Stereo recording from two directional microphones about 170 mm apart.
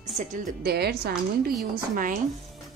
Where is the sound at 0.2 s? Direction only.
45° right (ahead or behind).